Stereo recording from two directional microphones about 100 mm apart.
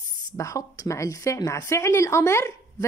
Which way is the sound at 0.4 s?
30° left (ahead or behind).